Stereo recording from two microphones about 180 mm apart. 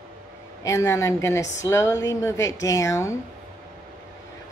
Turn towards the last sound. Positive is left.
turn(degrees=15)  # may be behind; listen again after turning